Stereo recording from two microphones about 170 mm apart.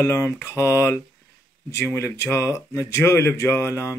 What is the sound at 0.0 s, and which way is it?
Speech, 15° left (ahead or behind).